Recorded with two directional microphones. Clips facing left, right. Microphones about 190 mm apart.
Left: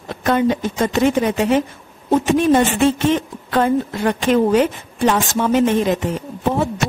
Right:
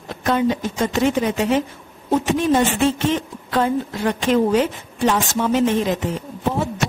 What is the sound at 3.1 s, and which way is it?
A woman's voice, 55° left (ahead or behind).